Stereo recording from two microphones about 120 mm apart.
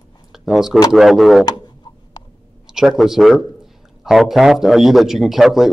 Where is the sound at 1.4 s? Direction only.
35° left (ahead or behind).